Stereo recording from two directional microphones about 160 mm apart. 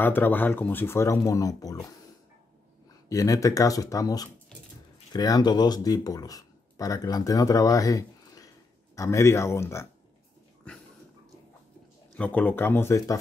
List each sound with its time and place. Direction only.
0.0 s speech: 10° left (ahead or behind)
3.1 s speech: 20° left (ahead or behind)
10.7 s a sound: 5° left (ahead or behind)
12.2 s speech: 10° left (ahead or behind)